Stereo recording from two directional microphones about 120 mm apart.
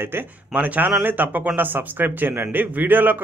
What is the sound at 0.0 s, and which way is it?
A man's voice, 15° right (ahead or behind).